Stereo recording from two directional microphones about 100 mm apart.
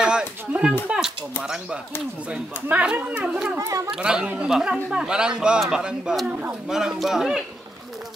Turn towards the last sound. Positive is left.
turn(degrees=-5)  # may be behind; listen again after turning